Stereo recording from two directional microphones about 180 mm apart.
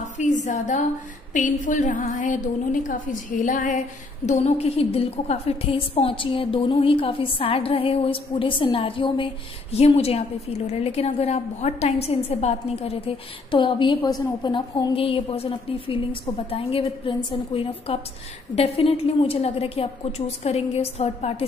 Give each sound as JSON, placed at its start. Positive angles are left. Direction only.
{"t": 0.2, "sound": "a woman's voice", "side_deg": 45}